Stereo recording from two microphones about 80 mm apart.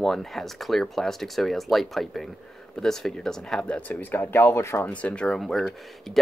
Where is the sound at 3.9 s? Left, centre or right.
Left.